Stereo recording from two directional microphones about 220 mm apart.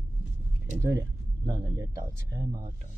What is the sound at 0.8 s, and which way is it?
Speech, 15° right (ahead or behind).